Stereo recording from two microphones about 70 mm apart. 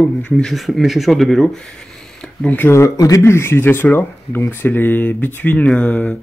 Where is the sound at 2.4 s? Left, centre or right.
Left.